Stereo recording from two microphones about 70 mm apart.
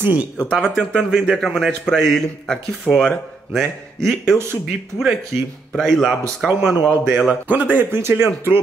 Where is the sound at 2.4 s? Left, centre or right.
Centre.